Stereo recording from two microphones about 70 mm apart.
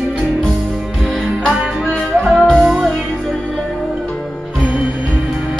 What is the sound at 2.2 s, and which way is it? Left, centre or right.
Music, centre.